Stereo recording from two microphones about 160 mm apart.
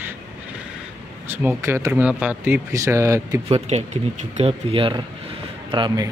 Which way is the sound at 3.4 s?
40° right (ahead or behind).